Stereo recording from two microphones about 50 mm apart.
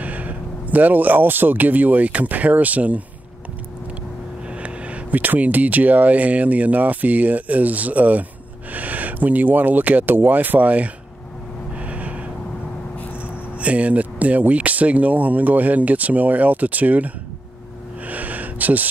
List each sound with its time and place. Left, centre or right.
0.0 s speech: right
4.5 s speech: right
11.7 s gasp: right
13.6 s speech: right
18.0 s a sound: right